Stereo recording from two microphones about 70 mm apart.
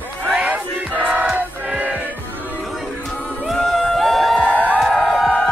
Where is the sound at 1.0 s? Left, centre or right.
Centre.